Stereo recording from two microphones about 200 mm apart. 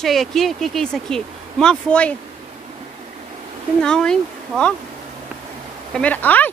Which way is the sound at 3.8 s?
5° left (ahead or behind).